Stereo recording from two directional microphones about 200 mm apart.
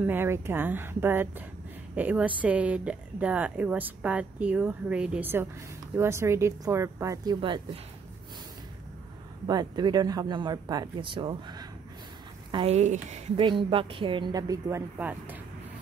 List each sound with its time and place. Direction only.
0.0 s a woman's voice: 10° right (ahead or behind)
9.5 s speech: 20° right (ahead or behind); by 13.2 s 35° right (ahead or behind)
13.4 s speech: 25° right (ahead or behind)
15.0 s speech: 10° right (ahead or behind)